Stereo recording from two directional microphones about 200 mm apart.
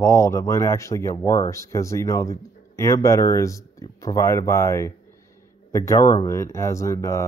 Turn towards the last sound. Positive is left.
turn(degrees=15)  # may be behind; listen again after turning